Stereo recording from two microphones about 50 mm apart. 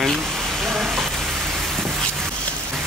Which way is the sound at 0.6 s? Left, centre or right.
Centre.